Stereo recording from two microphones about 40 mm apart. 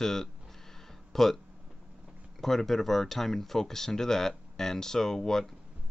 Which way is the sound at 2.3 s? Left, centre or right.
Centre.